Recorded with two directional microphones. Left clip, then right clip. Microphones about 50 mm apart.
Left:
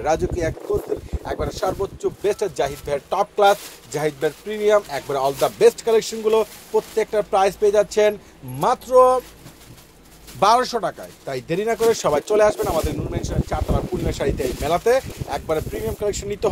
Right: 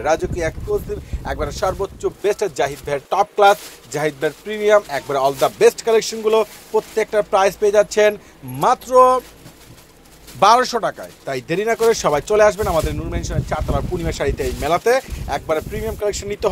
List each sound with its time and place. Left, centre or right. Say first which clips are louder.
0.0 s speech: right 2 dB; centre
5.1 s speech: right 3 dB; centre
6.7 s speech: right 2 dB; centre
8.5 s speech: right 2 dB; left
10.4 s speech: right 3 dB; centre
11.6 s speech: right 3 dB; left
12.6 s speech: right 3 dB; centre
14.4 s speech: right 2 dB; left
15.2 s speech: right 3 dB; centre